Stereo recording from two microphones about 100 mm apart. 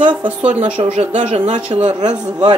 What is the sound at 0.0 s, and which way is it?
Speech, 55° right (ahead or behind).